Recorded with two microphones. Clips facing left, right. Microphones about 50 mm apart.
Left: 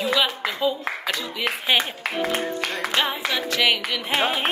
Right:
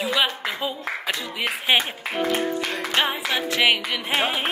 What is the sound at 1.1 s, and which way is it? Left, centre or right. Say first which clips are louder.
Speech: left 1 dB; centre.